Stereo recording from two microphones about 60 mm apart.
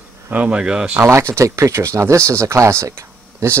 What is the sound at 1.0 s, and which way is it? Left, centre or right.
Speech, right.